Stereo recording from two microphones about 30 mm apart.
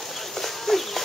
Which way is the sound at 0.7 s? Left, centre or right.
Centre.